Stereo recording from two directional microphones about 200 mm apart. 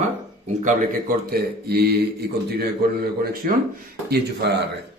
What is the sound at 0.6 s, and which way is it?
A man's voice, 45° right (ahead or behind).